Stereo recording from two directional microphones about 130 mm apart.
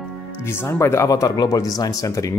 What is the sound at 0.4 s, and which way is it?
Speech, 20° left (ahead or behind).